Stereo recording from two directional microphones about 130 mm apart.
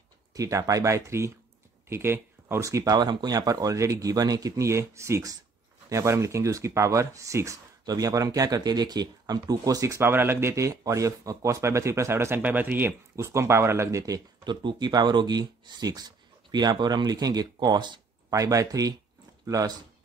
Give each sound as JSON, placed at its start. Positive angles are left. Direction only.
{"t": 0.3, "sound": "speech", "side_deg": -25}